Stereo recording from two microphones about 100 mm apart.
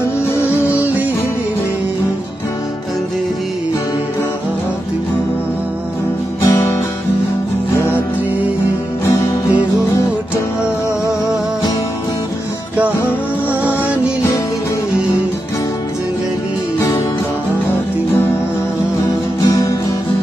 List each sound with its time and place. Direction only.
6.4 s music: 25° left (ahead or behind)
9.0 s music: 30° left (ahead or behind)
13.5 s music: 15° right (ahead or behind)
19.4 s music: 35° left (ahead or behind)